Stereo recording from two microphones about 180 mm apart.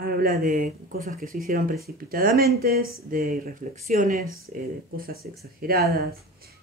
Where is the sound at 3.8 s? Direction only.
45° right (ahead or behind).